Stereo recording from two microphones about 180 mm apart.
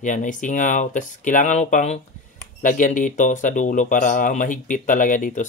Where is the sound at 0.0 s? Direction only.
45° left (ahead or behind).